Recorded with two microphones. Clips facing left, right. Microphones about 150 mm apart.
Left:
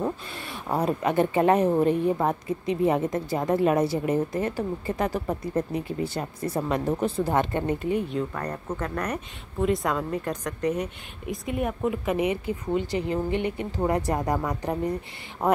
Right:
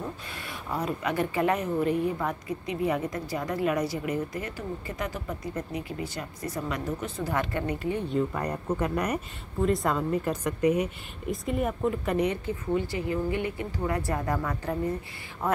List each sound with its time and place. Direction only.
0.8 s a woman's voice: 25° left (ahead or behind)
5.5 s a woman's voice: 30° left (ahead or behind)
8.1 s a woman's voice: 5° right (ahead or behind)
12.7 s a woman's voice: 20° left (ahead or behind)